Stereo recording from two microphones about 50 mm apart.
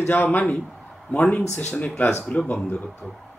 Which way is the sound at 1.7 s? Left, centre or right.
Left.